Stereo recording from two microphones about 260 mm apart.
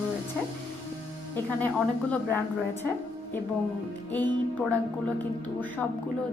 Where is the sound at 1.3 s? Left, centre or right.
Centre.